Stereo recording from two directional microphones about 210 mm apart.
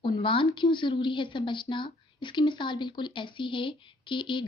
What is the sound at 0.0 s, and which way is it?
Speech, 25° left (ahead or behind).